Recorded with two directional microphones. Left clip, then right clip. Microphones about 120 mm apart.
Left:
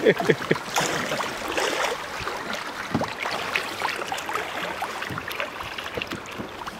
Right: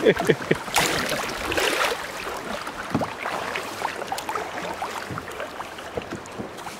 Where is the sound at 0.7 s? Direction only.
45° right (ahead or behind).